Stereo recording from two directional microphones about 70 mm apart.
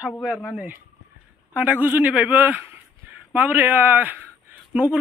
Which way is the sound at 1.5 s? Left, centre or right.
Right.